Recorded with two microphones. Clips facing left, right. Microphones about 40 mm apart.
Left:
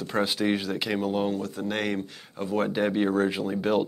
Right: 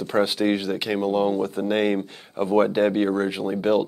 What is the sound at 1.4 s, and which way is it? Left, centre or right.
Speech, right.